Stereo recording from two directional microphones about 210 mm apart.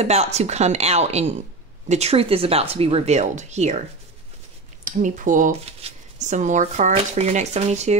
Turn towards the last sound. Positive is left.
turn(degrees=-35)  # may be behind; listen again after turning